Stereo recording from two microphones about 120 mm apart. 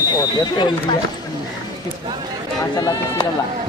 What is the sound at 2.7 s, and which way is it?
Speech, 35° left (ahead or behind).